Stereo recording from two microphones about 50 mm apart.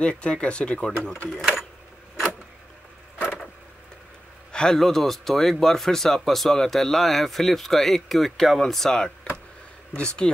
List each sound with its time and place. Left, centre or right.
0.0 s speech: left
4.5 s a sound: centre
4.7 s speech: centre